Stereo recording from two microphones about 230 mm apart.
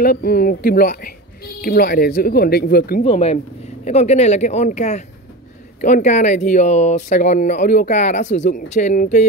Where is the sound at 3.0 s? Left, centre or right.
Left.